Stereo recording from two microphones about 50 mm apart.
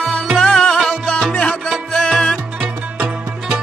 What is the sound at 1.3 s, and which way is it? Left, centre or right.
Music, left.